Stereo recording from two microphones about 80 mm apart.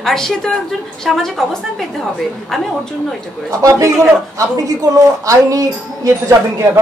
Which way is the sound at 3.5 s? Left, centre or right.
Right.